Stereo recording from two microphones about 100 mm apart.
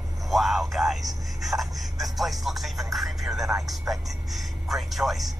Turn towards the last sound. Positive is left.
turn(degrees=0)  # may be behind; listen again after turning